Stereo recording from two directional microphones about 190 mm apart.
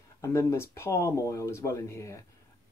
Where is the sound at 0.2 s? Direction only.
15° left (ahead or behind).